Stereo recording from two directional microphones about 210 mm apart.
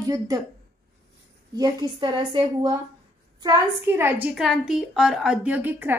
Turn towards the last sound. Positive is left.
turn(degrees=-10)  # may be behind; listen again after turning